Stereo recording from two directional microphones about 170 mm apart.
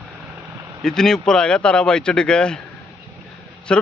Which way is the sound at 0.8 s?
5° left (ahead or behind).